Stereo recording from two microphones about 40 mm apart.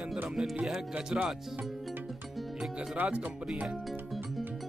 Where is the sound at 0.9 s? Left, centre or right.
Right.